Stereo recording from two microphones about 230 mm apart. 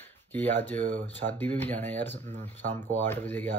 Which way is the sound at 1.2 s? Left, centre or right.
Centre.